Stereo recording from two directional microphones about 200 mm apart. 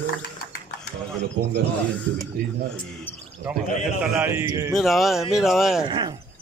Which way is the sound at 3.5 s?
5° right (ahead or behind).